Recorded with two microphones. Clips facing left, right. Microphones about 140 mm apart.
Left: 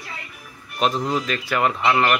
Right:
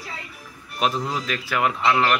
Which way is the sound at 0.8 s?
Centre (ahead or behind).